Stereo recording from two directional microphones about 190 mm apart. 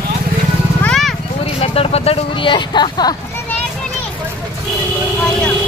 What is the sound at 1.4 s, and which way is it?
Speech, 30° left (ahead or behind).